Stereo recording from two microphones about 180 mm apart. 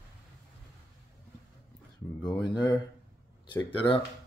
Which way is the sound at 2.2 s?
25° left (ahead or behind).